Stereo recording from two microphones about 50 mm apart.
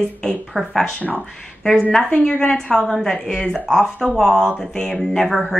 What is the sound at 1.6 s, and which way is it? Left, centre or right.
A woman's voice, centre.